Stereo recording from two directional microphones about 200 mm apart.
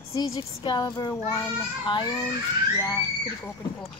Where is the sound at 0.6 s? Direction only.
20° left (ahead or behind).